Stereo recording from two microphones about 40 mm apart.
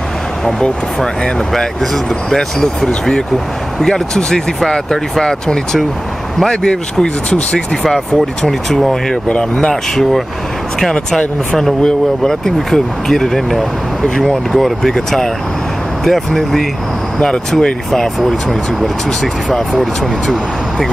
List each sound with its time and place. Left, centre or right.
2.2 s speech: centre
8.5 s speech: centre
10.8 s speech: centre